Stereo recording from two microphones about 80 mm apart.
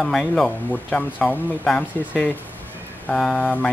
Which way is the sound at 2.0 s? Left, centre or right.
Left.